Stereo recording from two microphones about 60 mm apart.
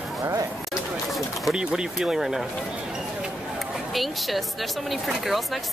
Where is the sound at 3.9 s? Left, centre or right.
Centre.